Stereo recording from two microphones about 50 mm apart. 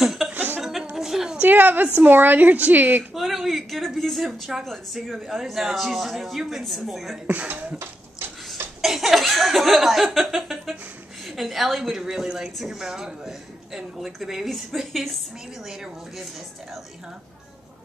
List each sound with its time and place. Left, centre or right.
0.0 s chuckle: centre
0.3 s chuckle: right
0.6 s chuckle: centre
0.9 s a sound: centre
1.4 s a woman's voice: right
3.0 s chuckle: centre
7.2 s a woman's voice: right
8.8 s chuckle: centre
12.0 s a woman's voice: centre
13.7 s chuckle: centre
15.6 s a woman's voice: centre